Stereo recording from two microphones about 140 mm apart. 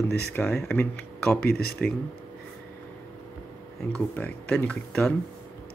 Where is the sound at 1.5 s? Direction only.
90° left.